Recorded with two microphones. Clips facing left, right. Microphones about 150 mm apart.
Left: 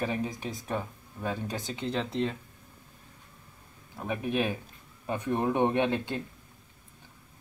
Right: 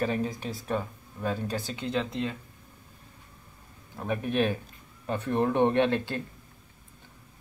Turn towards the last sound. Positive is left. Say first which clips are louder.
# right 3 dB
turn(degrees=15)  # may be behind; listen again after turning